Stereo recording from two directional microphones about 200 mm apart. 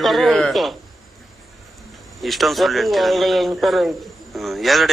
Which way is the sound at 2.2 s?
Centre (ahead or behind).